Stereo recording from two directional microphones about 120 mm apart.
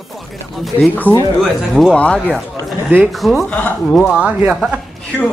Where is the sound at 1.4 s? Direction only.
Centre (ahead or behind).